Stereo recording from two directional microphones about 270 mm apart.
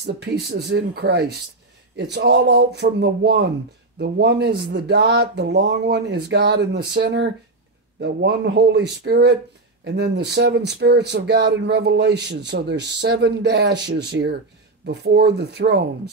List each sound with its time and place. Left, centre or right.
0.0 s speech: right